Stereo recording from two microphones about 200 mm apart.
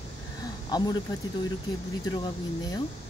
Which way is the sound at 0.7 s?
20° left (ahead or behind).